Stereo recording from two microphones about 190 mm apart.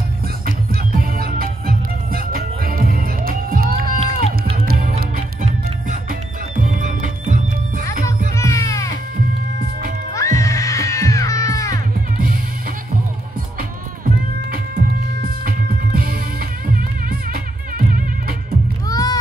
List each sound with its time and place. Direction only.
0.9 s music: 50° right (ahead or behind)
6.6 s music: 40° right (ahead or behind)
8.4 s music: 15° left (ahead or behind)
10.1 s music: 15° left (ahead or behind)
15.4 s music: 50° right (ahead or behind)
18.9 s music: 20° left (ahead or behind)